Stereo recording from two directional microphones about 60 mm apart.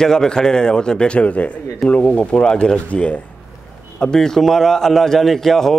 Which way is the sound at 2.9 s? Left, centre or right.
Left.